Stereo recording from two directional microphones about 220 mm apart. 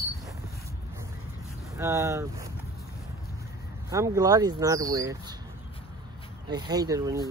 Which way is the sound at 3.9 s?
15° right (ahead or behind).